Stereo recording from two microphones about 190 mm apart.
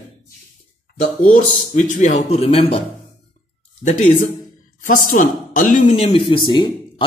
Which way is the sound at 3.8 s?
40° left (ahead or behind).